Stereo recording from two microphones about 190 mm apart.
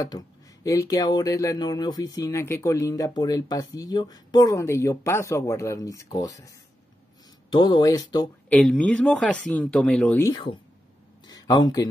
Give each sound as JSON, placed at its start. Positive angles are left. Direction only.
{"t": 0.7, "sound": "speech", "side_deg": 20}
{"t": 8.5, "sound": "speech", "side_deg": 5}